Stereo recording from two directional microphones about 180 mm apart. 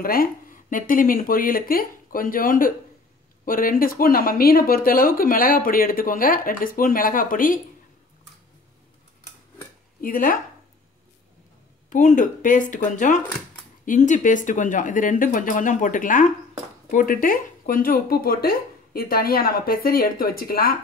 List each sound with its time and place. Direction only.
0.0 s speech: 55° left (ahead or behind)
10.0 s speech: 50° left (ahead or behind)
11.9 s speech: 45° left (ahead or behind)